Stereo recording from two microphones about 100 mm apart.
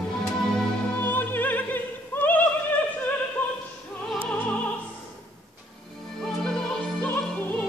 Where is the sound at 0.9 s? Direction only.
20° left (ahead or behind).